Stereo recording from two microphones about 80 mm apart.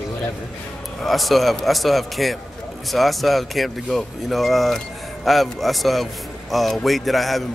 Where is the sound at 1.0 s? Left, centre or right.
Centre.